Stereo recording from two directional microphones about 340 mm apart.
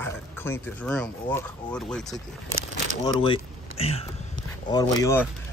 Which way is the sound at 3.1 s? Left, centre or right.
Centre.